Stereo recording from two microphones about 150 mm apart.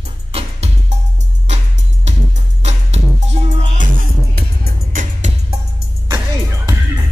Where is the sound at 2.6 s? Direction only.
45° right (ahead or behind).